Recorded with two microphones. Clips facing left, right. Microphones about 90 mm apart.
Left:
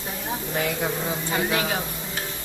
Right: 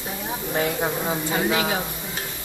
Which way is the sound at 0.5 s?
30° right (ahead or behind).